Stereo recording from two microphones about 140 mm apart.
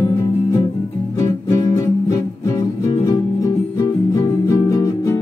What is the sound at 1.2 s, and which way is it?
Music, 25° left (ahead or behind).